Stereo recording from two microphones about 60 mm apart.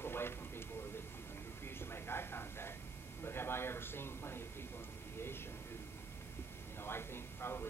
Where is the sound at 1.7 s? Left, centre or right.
Left.